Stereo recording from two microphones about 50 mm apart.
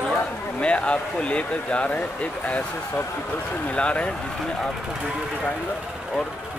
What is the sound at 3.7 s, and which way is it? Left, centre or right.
Speech, left.